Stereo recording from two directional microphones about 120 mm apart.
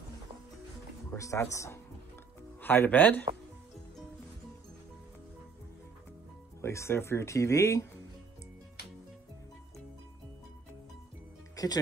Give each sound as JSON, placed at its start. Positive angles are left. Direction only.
{"t": 1.1, "sound": "speech", "side_deg": 25}
{"t": 6.6, "sound": "speech", "side_deg": 20}
{"t": 11.5, "sound": "music", "side_deg": 30}